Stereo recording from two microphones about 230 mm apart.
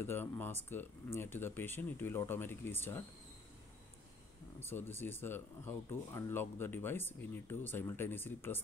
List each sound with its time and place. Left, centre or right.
0.0 s speech: centre
4.6 s speech: centre